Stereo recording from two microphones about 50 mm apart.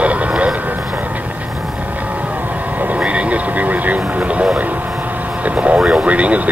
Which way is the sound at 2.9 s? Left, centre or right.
Right.